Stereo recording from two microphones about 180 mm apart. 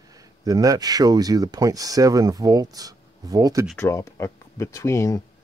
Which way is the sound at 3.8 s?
15° left (ahead or behind).